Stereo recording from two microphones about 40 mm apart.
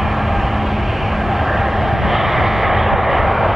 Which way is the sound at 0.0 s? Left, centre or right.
Centre.